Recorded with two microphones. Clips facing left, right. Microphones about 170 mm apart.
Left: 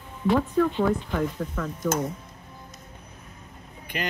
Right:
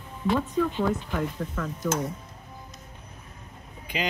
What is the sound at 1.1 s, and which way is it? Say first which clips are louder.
Speech: left 2 dB; centre (ahead or behind).